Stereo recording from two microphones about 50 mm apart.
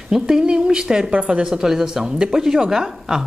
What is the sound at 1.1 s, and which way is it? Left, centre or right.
Speech, right.